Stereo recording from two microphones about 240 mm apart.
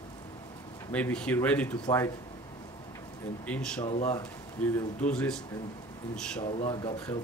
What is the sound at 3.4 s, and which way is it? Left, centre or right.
Speech, centre.